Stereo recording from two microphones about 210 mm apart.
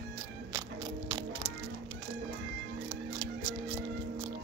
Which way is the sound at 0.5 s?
25° right (ahead or behind).